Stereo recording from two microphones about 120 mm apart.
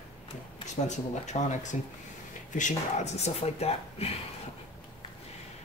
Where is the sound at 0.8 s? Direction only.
75° left (ahead or behind); by 4.2 s 55° left (ahead or behind).